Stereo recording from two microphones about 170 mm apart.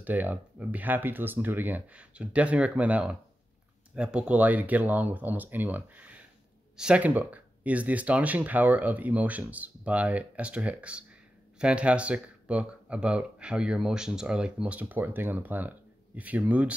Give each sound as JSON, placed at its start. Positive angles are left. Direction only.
{"t": 0.0, "sound": "speech", "side_deg": -10}